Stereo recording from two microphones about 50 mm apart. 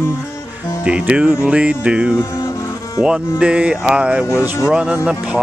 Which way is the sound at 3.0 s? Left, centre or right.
Centre.